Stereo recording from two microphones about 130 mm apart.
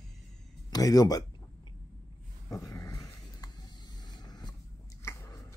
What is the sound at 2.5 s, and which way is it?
Dog, 25° left (ahead or behind).